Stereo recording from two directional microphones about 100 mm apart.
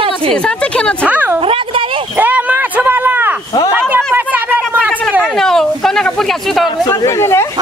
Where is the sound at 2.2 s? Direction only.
15° right (ahead or behind).